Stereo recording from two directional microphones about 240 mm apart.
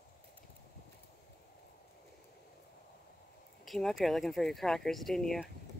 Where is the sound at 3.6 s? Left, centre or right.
Centre.